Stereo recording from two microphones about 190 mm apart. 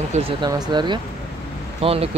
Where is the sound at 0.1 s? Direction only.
30° right (ahead or behind).